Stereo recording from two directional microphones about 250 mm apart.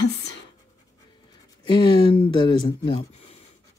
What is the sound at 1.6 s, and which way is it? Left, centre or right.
Speech, centre.